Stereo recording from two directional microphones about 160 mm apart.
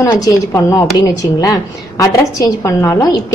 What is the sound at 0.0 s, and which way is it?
A woman's voice, 20° left (ahead or behind).